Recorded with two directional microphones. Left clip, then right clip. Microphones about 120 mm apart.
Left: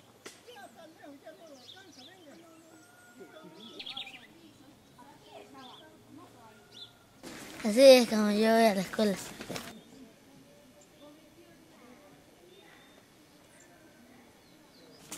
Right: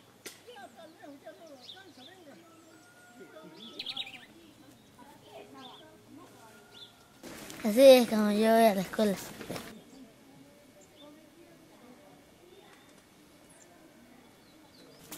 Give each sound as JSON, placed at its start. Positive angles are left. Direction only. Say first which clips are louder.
{"t": 0.5, "sound": "a sound", "louder": "right 1 dB", "side_deg": 5}
{"t": 3.7, "sound": "bird", "louder": "right 3 dB", "side_deg": -30}
{"t": 7.6, "sound": "speech", "louder": "even", "side_deg": 0}